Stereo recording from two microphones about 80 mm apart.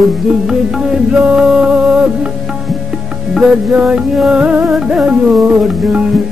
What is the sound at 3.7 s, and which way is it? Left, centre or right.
Music, centre.